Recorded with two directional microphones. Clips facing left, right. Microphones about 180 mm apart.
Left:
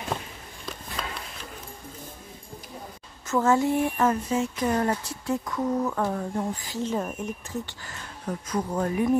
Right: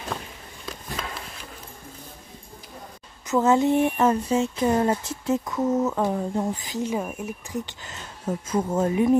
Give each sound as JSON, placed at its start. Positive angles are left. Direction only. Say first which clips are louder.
{"t": 3.3, "sound": "speech", "louder": "right 3 dB", "side_deg": -20}